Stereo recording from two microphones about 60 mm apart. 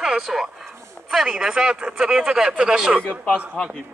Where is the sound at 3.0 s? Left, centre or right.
Centre.